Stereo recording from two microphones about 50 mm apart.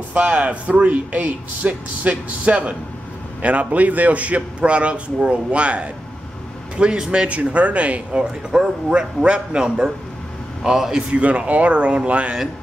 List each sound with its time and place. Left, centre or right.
0.1 s speech: right